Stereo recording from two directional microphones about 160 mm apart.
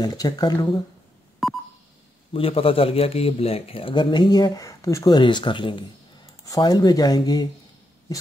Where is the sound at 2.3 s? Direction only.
35° left (ahead or behind).